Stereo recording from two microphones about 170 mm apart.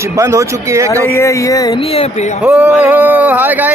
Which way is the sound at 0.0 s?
15° right (ahead or behind).